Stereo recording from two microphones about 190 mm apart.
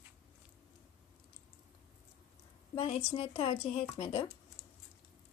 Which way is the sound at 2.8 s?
30° left (ahead or behind).